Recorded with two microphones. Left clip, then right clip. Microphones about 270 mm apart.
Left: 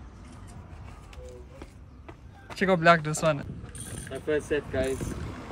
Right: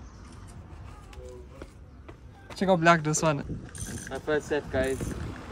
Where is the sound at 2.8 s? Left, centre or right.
Centre.